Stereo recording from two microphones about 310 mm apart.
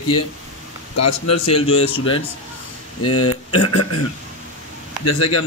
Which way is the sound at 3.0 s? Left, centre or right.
Left.